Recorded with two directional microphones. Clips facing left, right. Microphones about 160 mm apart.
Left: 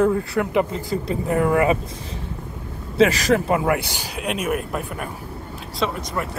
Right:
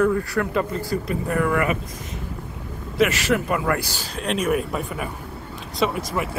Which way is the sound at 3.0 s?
35° left (ahead or behind).